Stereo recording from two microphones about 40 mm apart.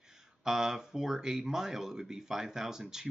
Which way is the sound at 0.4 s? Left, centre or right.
Centre.